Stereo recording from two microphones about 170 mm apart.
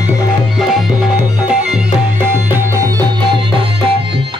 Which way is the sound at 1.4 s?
10° right (ahead or behind).